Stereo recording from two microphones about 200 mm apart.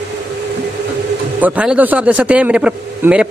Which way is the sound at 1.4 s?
5° right (ahead or behind).